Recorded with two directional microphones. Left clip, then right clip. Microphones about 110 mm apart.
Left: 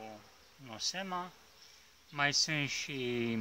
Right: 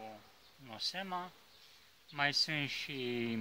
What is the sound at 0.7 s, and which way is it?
Speech, 20° left (ahead or behind).